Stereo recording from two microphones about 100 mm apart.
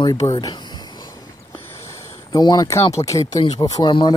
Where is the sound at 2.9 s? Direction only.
35° left (ahead or behind).